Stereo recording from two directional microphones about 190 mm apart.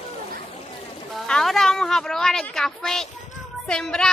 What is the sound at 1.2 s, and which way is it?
A woman's voice, centre (ahead or behind).